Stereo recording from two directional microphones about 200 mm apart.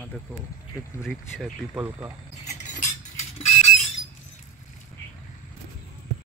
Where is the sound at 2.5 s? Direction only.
35° left (ahead or behind).